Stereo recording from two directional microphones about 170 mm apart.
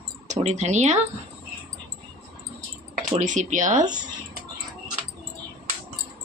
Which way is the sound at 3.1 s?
45° right (ahead or behind).